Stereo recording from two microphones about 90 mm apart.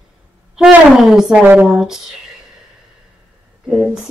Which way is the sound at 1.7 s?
5° right (ahead or behind).